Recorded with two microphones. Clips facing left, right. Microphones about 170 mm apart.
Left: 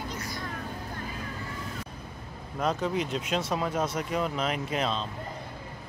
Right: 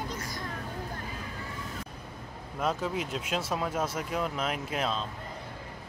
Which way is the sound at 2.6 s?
5° right (ahead or behind).